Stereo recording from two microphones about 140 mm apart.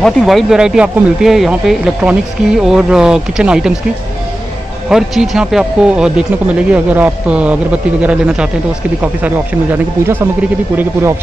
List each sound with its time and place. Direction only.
0.0 s speech: centre (ahead or behind)
4.8 s speech: 5° right (ahead or behind); by 11.1 s 20° right (ahead or behind)